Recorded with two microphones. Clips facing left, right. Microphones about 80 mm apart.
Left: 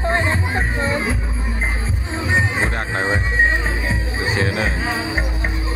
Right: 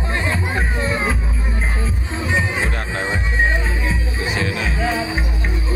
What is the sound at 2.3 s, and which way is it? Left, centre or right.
Music, left.